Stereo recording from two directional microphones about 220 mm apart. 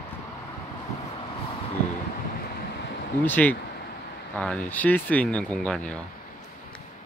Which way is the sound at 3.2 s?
10° left (ahead or behind).